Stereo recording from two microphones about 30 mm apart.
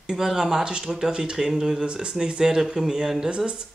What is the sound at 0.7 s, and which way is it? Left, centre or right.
Speech, right.